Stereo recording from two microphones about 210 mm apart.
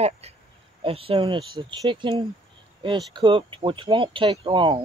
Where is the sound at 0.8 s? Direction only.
25° right (ahead or behind).